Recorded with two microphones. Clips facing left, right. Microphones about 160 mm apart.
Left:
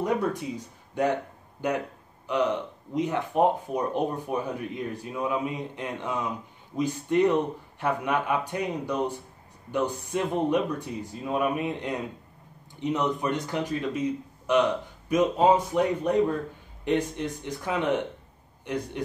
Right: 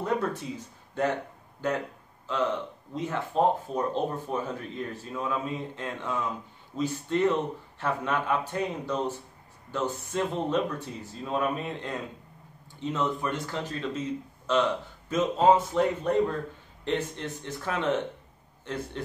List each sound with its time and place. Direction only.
0.0 s speech: 15° left (ahead or behind)